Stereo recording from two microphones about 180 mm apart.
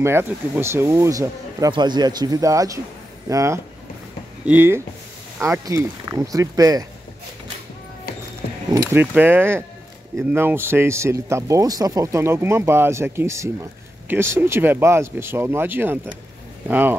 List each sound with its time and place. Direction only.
0.0 s speech: 15° right (ahead or behind)
8.7 s speech: 15° right (ahead or behind)